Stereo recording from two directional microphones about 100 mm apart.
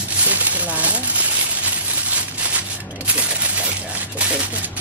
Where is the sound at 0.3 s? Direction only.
15° right (ahead or behind).